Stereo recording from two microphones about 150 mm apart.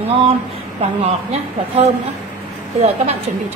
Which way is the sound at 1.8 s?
45° right (ahead or behind).